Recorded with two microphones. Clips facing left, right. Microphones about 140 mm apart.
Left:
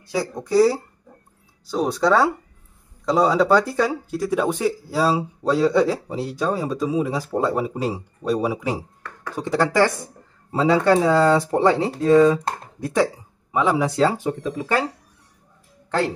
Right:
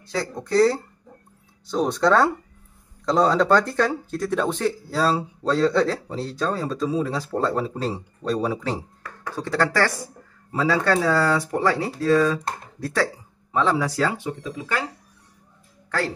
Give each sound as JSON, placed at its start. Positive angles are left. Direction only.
{"t": 0.0, "sound": "speech", "side_deg": 10}
{"t": 14.1, "sound": "speech", "side_deg": 45}